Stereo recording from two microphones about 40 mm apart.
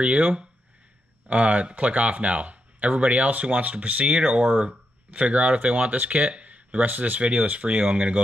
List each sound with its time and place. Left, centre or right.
0.0 s speech: right